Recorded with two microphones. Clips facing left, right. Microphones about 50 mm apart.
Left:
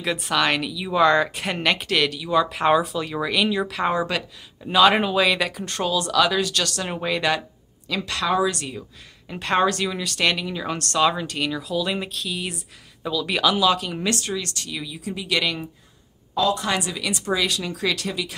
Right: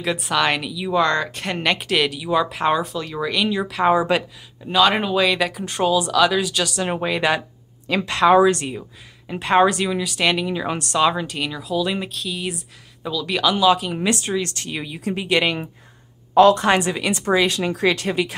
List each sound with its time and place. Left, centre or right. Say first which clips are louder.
0.0 s speech: right 2 dB; centre
2.5 s speech: left 1 dB; centre
4.6 s speech: left 1 dB; centre
7.9 s speech: right 8 dB; right
9.3 s speech: right 4 dB; centre; by 15.2 s right
15.2 s speech: right 4 dB; right
16.3 s a woman's voice: right 9 dB; right
16.6 s speech: right 6 dB; right